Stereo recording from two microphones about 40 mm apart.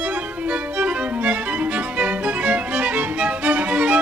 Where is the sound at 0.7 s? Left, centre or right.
Right.